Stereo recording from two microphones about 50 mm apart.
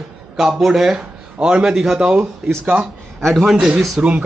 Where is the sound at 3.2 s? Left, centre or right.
Centre.